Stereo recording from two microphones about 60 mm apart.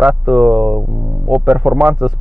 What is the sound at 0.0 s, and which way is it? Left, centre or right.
Speech, centre.